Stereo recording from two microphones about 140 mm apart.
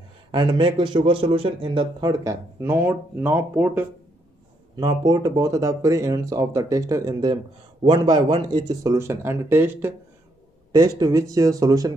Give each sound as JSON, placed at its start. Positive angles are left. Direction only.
{"t": 0.3, "sound": "a man's voice", "side_deg": -35}
{"t": 4.7, "sound": "speech", "side_deg": -30}
{"t": 10.7, "sound": "speech", "side_deg": -25}